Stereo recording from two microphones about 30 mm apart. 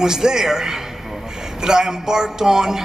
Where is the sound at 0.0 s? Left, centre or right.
Right.